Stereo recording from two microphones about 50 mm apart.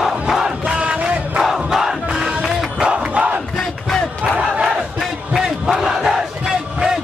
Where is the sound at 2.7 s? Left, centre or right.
Right.